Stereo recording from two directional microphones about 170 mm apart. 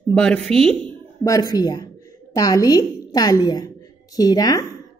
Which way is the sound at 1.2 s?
20° left (ahead or behind).